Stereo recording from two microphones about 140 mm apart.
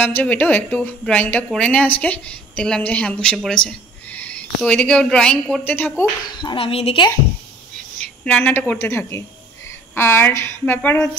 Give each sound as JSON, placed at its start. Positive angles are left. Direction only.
{"t": 0.0, "sound": "a woman's voice", "side_deg": 15}
{"t": 6.2, "sound": "speech", "side_deg": 35}
{"t": 8.0, "sound": "a woman's voice", "side_deg": 10}